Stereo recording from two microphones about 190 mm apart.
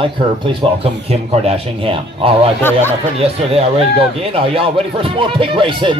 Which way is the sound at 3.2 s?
30° right (ahead or behind).